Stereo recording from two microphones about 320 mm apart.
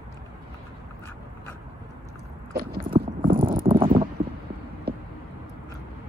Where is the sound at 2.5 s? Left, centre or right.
Right.